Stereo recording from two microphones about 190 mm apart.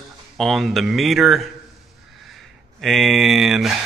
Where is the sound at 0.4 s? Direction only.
Centre (ahead or behind).